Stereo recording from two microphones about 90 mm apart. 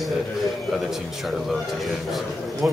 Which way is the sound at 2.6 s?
20° right (ahead or behind).